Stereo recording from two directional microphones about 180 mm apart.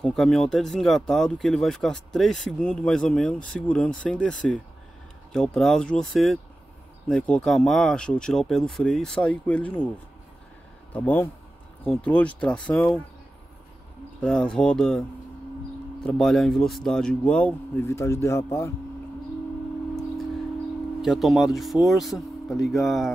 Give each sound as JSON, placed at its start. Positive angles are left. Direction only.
{"t": 0.0, "sound": "speech", "side_deg": 5}
{"t": 10.9, "sound": "speech", "side_deg": 10}
{"t": 14.2, "sound": "speech", "side_deg": 5}
{"t": 21.0, "sound": "speech", "side_deg": 0}